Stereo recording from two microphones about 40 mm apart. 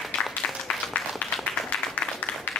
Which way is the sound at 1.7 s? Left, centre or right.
Left.